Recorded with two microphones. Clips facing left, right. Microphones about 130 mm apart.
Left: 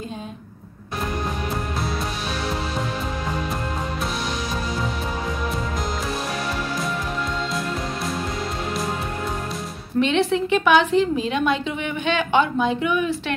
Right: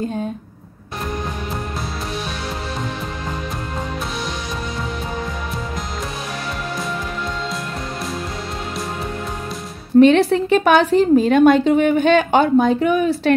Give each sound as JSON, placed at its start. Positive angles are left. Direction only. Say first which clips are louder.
{"t": 9.9, "sound": "a woman's voice", "louder": "right 8 dB", "side_deg": -45}